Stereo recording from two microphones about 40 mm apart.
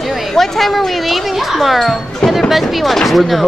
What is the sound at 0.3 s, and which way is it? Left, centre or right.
Speech, centre.